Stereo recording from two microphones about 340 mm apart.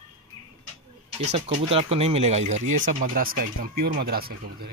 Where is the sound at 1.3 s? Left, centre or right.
Centre.